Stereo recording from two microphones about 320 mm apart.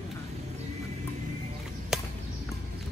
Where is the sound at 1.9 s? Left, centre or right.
Centre.